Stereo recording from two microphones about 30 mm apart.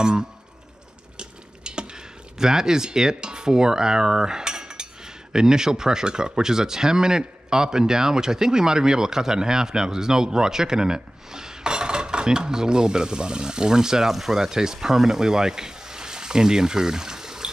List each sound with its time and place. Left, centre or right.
0.0 s speech: right
1.1 s a sound: right
2.3 s speech: centre
14.1 s speech: centre
14.4 s speech: centre